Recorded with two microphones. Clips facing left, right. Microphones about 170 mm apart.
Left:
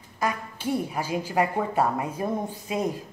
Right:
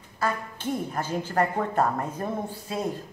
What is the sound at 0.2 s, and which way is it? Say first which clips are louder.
A woman's voice: even; 10° left (ahead or behind).